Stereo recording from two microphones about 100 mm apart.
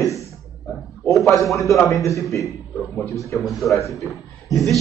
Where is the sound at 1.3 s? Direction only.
Centre (ahead or behind).